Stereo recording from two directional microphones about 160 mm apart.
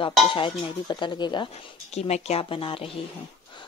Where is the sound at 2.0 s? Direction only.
40° left (ahead or behind).